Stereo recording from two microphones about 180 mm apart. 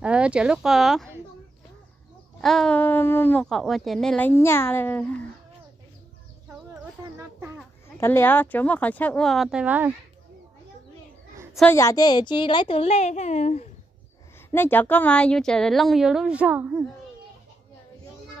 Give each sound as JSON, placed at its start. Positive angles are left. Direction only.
{"t": 0.0, "sound": "speech", "side_deg": -5}
{"t": 2.4, "sound": "speech", "side_deg": 5}
{"t": 4.3, "sound": "speech", "side_deg": 15}
{"t": 7.2, "sound": "a sound", "side_deg": -15}
{"t": 8.0, "sound": "speech", "side_deg": 10}
{"t": 11.7, "sound": "a woman's voice", "side_deg": 15}
{"t": 14.5, "sound": "speech", "side_deg": 10}